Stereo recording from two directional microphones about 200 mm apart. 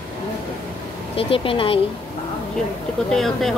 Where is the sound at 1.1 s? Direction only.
25° left (ahead or behind).